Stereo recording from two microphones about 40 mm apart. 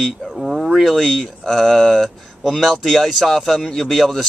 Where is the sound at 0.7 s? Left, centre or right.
Centre.